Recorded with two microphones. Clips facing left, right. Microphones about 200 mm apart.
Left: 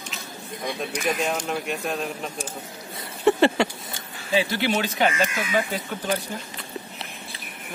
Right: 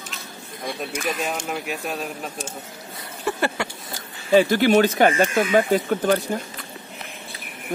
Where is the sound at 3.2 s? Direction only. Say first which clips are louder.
Left 6 dB; 25° left (ahead or behind).